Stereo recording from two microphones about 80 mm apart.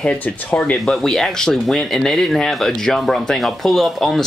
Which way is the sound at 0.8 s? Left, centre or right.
Centre.